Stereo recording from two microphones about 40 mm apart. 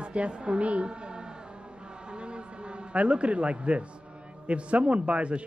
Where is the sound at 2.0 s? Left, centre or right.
Right.